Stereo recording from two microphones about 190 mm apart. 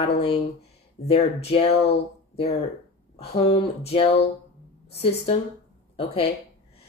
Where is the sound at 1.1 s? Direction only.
30° left (ahead or behind).